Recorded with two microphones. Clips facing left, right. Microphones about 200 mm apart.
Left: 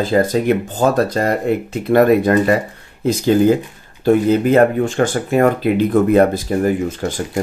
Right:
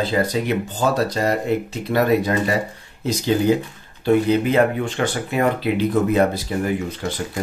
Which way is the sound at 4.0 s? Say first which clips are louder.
Left 4 dB; 45° left (ahead or behind).